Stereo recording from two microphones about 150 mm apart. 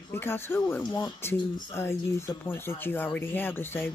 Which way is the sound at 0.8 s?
30° left (ahead or behind).